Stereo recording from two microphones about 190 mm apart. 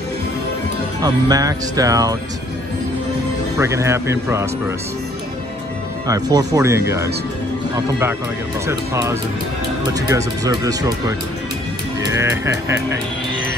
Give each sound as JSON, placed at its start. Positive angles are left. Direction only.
{"t": 1.0, "sound": "speech", "side_deg": -20}
{"t": 3.5, "sound": "speech", "side_deg": -15}
{"t": 6.0, "sound": "speech", "side_deg": -20}
{"t": 8.6, "sound": "speech", "side_deg": -15}